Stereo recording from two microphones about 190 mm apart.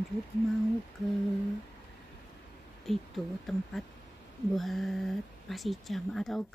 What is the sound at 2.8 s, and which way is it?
Speech, centre (ahead or behind).